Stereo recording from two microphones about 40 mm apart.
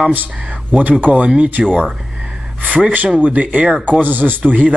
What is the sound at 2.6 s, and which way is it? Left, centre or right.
Speech, right.